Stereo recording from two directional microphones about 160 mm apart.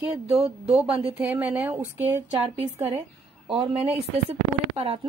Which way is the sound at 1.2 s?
10° right (ahead or behind).